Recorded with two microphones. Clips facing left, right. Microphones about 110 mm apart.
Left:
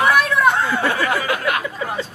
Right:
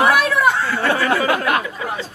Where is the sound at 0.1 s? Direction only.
5° right (ahead or behind).